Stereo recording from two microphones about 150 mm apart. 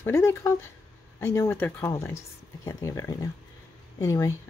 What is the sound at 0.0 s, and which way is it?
Speech, 15° left (ahead or behind).